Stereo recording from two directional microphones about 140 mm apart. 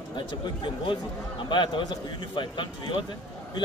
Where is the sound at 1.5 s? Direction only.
35° left (ahead or behind).